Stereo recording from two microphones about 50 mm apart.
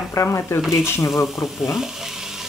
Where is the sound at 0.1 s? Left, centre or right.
Left.